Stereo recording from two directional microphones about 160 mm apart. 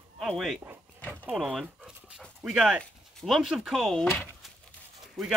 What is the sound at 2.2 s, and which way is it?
Speech, centre (ahead or behind).